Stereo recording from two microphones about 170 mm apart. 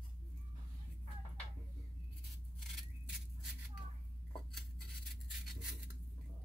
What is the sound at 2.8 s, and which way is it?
Scissors, centre (ahead or behind).